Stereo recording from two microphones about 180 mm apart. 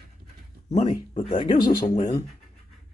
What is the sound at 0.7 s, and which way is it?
Speech, 35° left (ahead or behind).